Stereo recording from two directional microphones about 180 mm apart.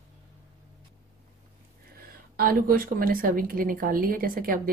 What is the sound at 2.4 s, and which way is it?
Speech, 55° right (ahead or behind).